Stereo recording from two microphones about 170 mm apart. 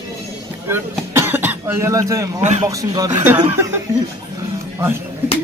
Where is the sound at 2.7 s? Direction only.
20° right (ahead or behind).